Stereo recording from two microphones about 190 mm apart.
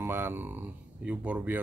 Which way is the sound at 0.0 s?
10° right (ahead or behind).